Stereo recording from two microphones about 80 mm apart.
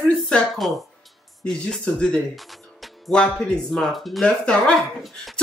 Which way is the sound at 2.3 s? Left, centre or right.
Centre.